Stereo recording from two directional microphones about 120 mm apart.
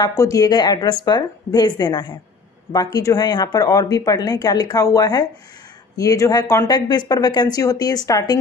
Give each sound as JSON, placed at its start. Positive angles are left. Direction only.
{"t": 0.0, "sound": "speech", "side_deg": 30}